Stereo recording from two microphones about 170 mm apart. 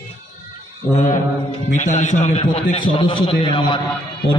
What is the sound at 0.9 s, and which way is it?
A man's voice, 50° left (ahead or behind).